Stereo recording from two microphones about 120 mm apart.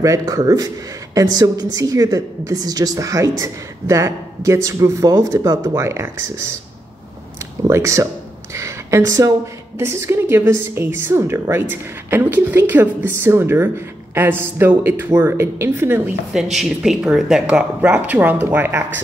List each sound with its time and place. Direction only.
0.0 s a woman's voice: 30° right (ahead or behind)
7.7 s a woman's voice: 25° right (ahead or behind)
8.5 s a sound: 25° right (ahead or behind)
9.8 s a woman's voice: 20° right (ahead or behind)
16.5 s speech: 5° right (ahead or behind); by 18.9 s 20° right (ahead or behind)